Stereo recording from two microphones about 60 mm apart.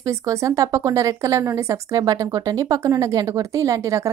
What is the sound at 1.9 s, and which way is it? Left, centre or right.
Speech, right.